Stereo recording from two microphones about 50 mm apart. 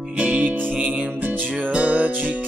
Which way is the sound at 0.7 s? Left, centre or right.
Right.